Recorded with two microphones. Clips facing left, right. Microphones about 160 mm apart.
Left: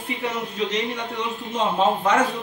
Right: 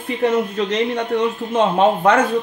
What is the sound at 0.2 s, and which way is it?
A man's voice, 60° right (ahead or behind).